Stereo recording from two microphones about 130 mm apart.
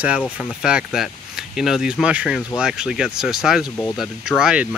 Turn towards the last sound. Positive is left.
turn(degrees=-5)  # may be behind; listen again after turning